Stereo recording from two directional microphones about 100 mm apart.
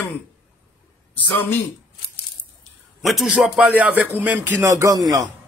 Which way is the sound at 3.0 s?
Centre (ahead or behind).